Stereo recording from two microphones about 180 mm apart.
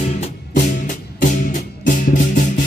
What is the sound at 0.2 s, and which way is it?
Music, 45° left (ahead or behind).